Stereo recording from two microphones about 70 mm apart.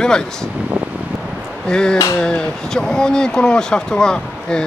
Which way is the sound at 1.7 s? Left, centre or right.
Centre.